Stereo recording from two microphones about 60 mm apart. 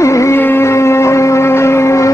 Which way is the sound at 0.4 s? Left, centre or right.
Left.